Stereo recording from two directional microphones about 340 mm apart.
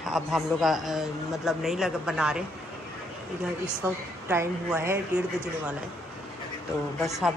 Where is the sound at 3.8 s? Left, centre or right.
Centre.